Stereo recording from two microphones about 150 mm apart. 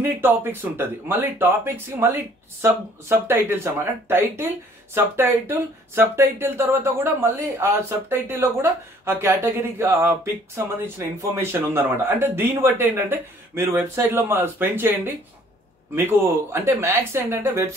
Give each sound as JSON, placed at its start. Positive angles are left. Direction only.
{"t": 0.0, "sound": "speech", "side_deg": -15}